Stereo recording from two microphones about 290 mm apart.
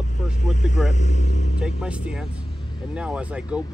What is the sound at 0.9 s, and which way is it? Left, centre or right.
Speech, left.